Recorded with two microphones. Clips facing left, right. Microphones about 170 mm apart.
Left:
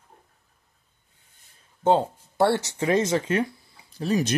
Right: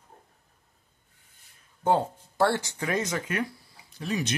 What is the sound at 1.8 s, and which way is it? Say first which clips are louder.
Speech: left 4 dB; 20° left (ahead or behind).